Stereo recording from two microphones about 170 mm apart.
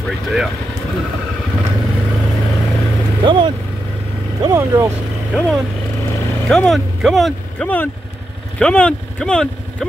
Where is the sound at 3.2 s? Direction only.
30° right (ahead or behind).